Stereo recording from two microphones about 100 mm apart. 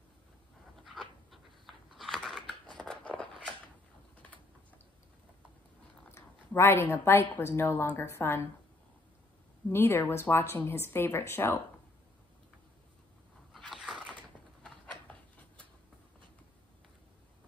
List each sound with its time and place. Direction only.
0.8 s a sound: centre (ahead or behind)
6.1 s a woman's voice: 25° left (ahead or behind)
9.7 s a woman's voice: 25° left (ahead or behind)
13.5 s biting: 5° left (ahead or behind)